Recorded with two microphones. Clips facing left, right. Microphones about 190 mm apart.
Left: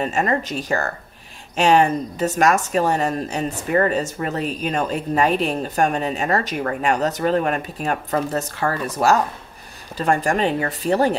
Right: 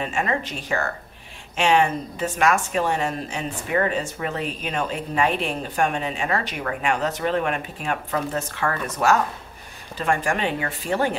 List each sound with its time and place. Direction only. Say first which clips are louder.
0.0 s speech: left 4 dB; 40° left (ahead or behind)